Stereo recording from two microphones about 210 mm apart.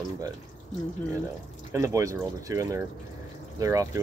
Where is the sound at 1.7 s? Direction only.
15° right (ahead or behind).